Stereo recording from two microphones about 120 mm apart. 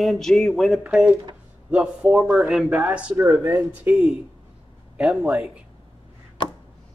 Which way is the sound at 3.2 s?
20° right (ahead or behind).